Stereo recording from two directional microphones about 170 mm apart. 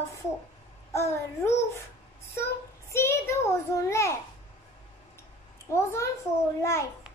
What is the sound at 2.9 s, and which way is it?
A child's voice, 15° left (ahead or behind).